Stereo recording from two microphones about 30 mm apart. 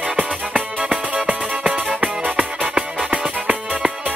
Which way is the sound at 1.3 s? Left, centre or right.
Right.